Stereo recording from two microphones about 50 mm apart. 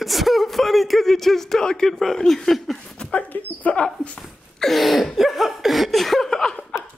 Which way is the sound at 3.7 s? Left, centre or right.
Left.